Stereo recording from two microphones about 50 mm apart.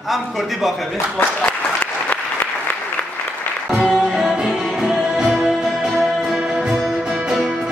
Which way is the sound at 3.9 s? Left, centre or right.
Centre.